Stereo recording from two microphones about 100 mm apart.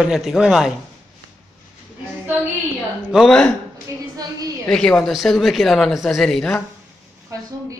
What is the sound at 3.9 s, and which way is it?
Speech, 30° right (ahead or behind).